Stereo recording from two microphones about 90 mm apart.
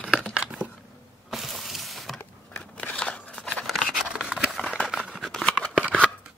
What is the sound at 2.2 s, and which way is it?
Scissors, 15° left (ahead or behind).